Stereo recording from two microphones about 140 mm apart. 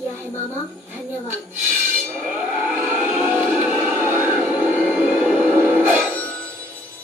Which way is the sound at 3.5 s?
10° right (ahead or behind).